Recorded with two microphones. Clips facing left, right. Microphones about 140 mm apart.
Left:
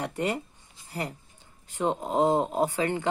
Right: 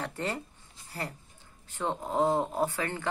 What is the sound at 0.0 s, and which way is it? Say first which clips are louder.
Speech: left 5 dB; 15° left (ahead or behind).